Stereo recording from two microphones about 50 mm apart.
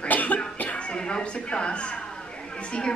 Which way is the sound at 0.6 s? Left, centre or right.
Left.